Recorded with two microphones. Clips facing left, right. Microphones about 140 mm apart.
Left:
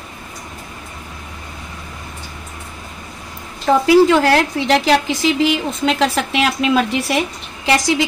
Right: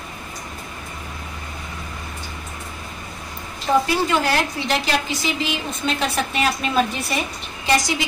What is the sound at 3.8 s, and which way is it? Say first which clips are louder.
A woman's voice: left 10 dB; 90° left.